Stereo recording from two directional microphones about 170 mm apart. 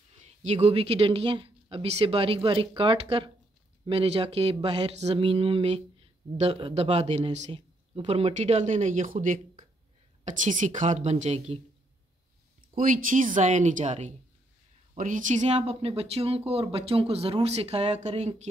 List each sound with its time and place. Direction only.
0.2 s speech: 40° right (ahead or behind)
12.7 s speech: 50° right (ahead or behind)